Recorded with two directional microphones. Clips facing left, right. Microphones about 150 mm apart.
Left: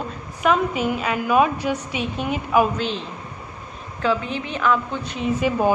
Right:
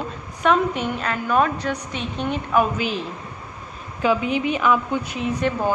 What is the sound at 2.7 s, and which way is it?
A woman's voice, 5° right (ahead or behind).